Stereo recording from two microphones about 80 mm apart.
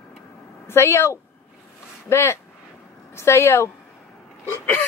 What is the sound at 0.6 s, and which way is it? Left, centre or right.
A woman's voice, left.